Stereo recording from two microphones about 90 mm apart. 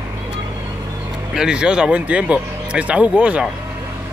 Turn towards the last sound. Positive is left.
turn(degrees=-15)  # may be behind; listen again after turning